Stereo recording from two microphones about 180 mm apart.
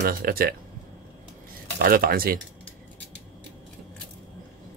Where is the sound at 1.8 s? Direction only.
55° right (ahead or behind).